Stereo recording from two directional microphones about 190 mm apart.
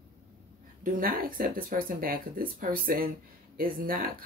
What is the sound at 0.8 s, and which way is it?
Speech, 50° right (ahead or behind).